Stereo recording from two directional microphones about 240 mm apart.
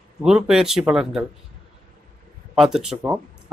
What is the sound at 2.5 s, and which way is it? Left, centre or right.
Speech, centre.